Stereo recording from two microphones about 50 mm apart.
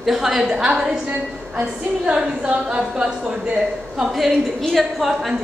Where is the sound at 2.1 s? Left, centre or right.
Centre.